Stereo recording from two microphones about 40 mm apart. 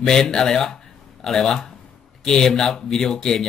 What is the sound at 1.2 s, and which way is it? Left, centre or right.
Speech, centre.